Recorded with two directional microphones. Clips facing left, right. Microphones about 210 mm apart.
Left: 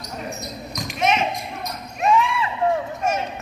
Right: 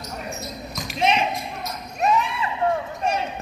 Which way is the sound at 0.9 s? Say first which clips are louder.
Even; 30° right (ahead or behind).